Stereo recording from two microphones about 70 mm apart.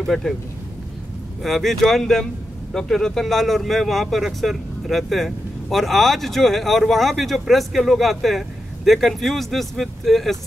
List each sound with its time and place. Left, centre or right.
0.0 s speech: centre
1.4 s speech: centre